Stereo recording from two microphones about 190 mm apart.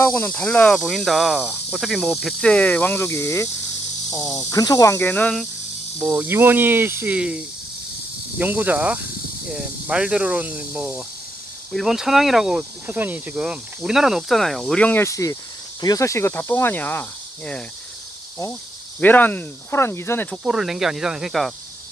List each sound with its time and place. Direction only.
0.0 s speech: 10° left (ahead or behind)
5.9 s speech: 10° right (ahead or behind); by 17.6 s 10° left (ahead or behind)
18.9 s speech: 10° left (ahead or behind)
20.4 s speech: centre (ahead or behind)